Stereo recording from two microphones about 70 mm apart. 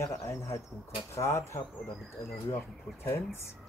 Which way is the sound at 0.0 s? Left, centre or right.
Left.